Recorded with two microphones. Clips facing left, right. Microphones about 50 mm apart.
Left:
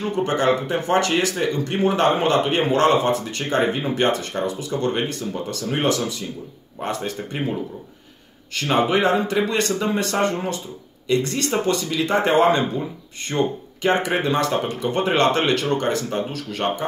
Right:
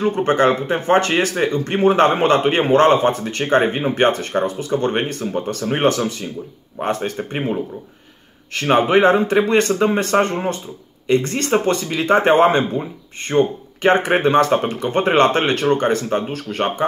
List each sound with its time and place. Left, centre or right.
0.0 s speech: right
8.6 s speech: right